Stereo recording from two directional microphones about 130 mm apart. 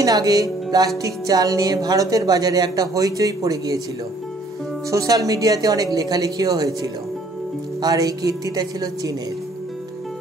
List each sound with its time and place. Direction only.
0.0 s music: 25° right (ahead or behind)
4.9 s music: 25° right (ahead or behind)